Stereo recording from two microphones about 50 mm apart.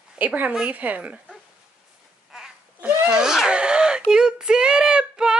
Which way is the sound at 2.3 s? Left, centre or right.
Centre.